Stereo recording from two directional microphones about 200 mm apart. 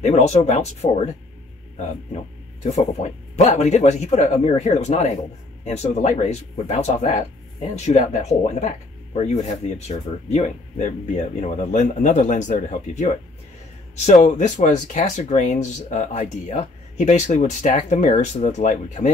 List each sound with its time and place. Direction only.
0.0 s speech: 35° left (ahead or behind)
2.8 s speech: 35° left (ahead or behind)